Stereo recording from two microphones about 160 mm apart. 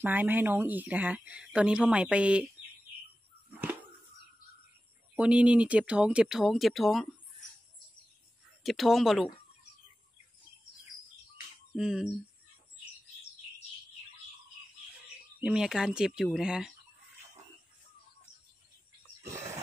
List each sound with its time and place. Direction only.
0.0 s speech: 10° right (ahead or behind)
5.1 s speech: 10° right (ahead or behind)
8.6 s speech: centre (ahead or behind)
11.7 s speech: 5° right (ahead or behind)
15.4 s speech: 5° right (ahead or behind)
19.2 s a sound: 15° right (ahead or behind)